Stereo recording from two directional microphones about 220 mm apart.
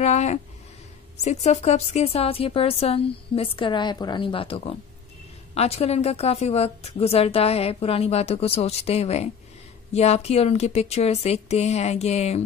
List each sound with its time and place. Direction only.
0.0 s a woman's voice: 30° left (ahead or behind)